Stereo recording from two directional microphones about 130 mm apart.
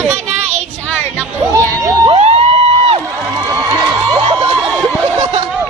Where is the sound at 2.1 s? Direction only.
55° right (ahead or behind).